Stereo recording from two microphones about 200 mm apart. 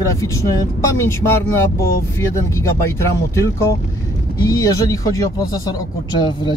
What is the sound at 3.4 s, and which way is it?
Speech, 15° left (ahead or behind).